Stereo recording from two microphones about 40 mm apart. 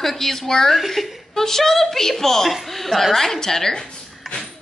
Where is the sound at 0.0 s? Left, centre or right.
Centre.